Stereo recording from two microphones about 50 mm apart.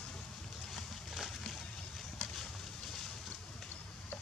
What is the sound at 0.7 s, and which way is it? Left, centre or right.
Boat, centre.